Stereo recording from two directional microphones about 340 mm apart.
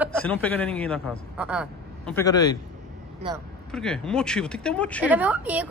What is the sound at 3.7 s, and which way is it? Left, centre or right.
Speech, centre.